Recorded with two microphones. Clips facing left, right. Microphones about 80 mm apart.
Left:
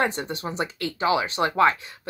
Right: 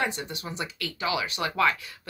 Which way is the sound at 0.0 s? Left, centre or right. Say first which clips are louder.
Left 5 dB; left.